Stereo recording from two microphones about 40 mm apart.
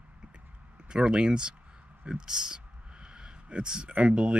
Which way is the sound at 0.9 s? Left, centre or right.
Right.